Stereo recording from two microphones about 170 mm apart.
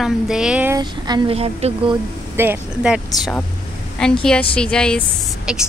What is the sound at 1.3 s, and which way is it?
Speech, 35° right (ahead or behind).